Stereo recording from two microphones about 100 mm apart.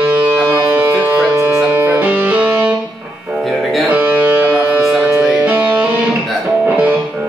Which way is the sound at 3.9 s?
15° right (ahead or behind).